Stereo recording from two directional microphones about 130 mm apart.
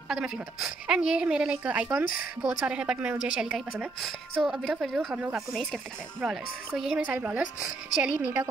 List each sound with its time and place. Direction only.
0.1 s a woman's voice: 5° right (ahead or behind)